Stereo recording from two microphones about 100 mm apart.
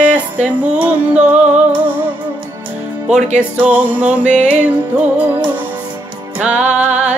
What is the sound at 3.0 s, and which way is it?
Music, 10° right (ahead or behind).